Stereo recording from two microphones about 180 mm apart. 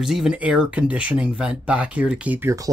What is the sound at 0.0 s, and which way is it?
Speech, centre (ahead or behind).